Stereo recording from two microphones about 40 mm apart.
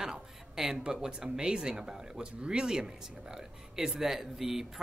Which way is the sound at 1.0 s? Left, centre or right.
Centre.